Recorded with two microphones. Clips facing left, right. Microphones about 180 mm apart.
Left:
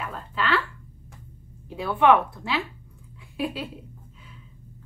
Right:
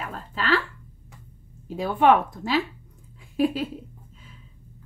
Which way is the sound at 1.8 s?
45° right (ahead or behind).